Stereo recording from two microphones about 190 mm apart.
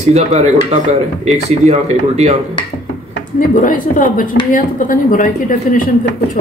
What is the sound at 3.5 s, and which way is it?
Speech, 45° left (ahead or behind).